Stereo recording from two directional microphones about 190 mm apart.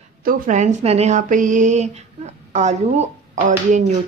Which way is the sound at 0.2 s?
45° right (ahead or behind).